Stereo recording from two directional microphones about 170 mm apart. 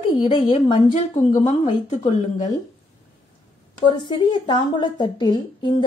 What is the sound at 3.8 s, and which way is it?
A woman's voice, 25° left (ahead or behind).